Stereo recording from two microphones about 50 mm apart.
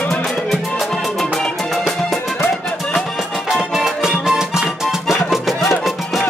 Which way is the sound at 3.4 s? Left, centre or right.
Centre.